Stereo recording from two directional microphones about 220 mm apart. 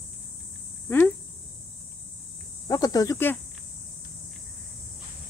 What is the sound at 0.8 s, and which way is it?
Cricket, 10° left (ahead or behind).